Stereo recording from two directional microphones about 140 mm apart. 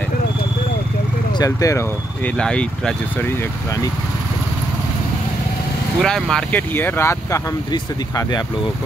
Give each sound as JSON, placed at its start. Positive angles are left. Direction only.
{"t": 1.4, "sound": "speech", "side_deg": 25}
{"t": 2.2, "sound": "speech", "side_deg": 5}
{"t": 5.9, "sound": "speech", "side_deg": 5}